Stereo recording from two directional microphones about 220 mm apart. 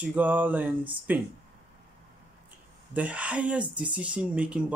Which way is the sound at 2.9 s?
5° right (ahead or behind).